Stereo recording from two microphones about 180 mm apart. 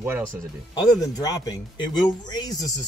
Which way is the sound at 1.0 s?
20° left (ahead or behind).